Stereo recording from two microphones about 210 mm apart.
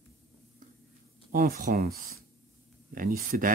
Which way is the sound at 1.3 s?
40° right (ahead or behind).